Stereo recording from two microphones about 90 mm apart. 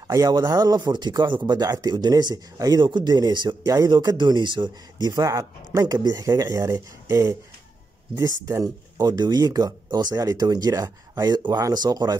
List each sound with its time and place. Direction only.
0.1 s speech: 40° right (ahead or behind)
8.5 s speech: 35° right (ahead or behind)
9.0 s speech: 50° right (ahead or behind)